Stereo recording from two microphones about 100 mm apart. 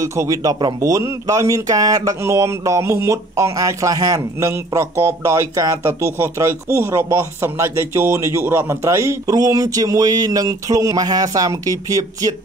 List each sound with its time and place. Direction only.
0.0 s speech: 35° right (ahead or behind)